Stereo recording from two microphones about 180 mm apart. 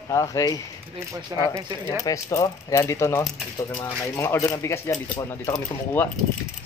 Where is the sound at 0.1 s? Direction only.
20° left (ahead or behind).